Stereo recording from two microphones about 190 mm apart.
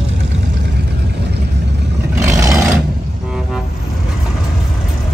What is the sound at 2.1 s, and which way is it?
Vehicle, 15° right (ahead or behind).